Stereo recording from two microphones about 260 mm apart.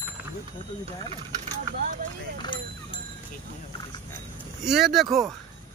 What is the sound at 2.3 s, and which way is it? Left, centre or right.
Speech, centre.